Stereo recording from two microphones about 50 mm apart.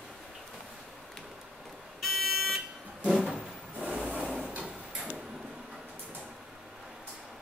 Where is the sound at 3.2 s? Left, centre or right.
Centre.